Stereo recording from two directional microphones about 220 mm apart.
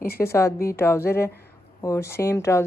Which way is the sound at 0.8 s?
10° left (ahead or behind).